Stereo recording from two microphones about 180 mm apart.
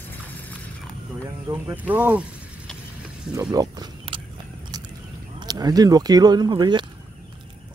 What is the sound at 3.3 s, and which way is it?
Biting, 25° right (ahead or behind).